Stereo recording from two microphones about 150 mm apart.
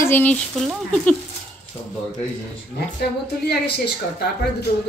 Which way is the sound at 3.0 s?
90° left.